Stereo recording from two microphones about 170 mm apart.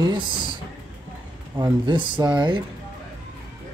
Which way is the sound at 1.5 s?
25° right (ahead or behind).